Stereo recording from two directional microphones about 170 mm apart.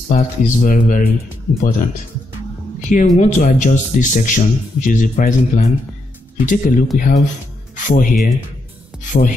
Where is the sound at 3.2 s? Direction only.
50° left (ahead or behind).